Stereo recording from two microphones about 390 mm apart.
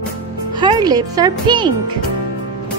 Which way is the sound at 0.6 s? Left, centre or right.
Centre.